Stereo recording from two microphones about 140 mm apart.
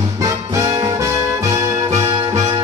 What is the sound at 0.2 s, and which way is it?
Music, 25° right (ahead or behind).